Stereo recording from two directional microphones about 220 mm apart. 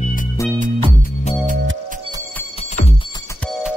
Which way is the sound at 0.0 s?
35° left (ahead or behind).